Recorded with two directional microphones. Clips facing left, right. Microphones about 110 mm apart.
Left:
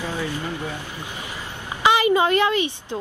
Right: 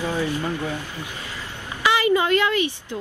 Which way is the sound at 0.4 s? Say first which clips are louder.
Right 3 dB; 15° left (ahead or behind).